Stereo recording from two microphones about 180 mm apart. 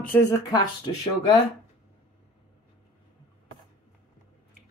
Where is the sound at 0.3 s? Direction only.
20° left (ahead or behind).